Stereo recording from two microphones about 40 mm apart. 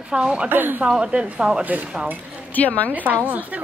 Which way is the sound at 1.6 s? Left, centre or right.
Right.